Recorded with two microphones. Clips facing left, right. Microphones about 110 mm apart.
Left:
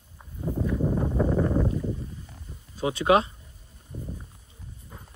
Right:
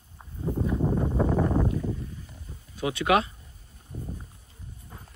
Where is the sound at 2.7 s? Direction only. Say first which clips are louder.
Left 2 dB; 30° left (ahead or behind).